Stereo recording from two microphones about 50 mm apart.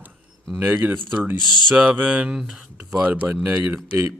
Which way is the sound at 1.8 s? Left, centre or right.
Right.